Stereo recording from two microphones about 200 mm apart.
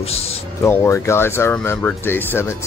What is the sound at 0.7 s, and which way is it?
Speech, 15° left (ahead or behind).